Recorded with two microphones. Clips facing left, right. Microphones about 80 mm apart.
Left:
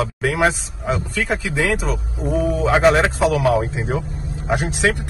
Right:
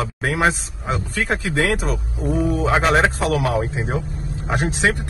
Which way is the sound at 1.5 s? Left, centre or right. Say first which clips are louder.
Even; right.